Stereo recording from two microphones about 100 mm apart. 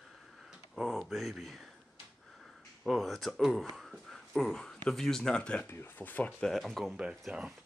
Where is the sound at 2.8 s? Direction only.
Centre (ahead or behind); by 6.3 s 15° left (ahead or behind).